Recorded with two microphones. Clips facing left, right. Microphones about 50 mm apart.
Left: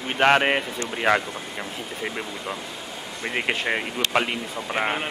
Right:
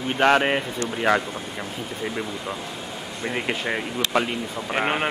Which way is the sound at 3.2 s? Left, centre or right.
Left.